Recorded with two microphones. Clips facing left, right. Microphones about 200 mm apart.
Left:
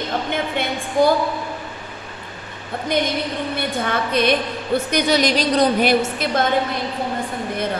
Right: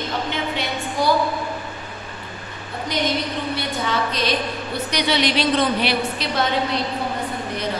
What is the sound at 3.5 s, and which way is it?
A woman's voice, 55° left (ahead or behind).